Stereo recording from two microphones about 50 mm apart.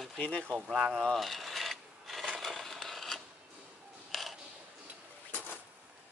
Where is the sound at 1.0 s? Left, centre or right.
Centre.